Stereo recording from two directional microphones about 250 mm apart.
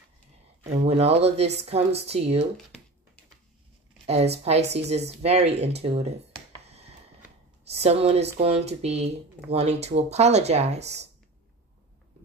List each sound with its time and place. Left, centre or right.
0.7 s speech: right
4.0 s speech: right